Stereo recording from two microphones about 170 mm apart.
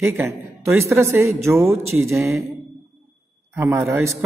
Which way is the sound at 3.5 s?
15° right (ahead or behind).